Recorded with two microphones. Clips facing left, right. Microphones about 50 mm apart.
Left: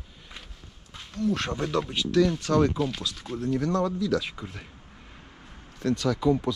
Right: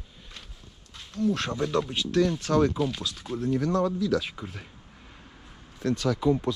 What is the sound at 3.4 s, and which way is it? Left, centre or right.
Speech, left.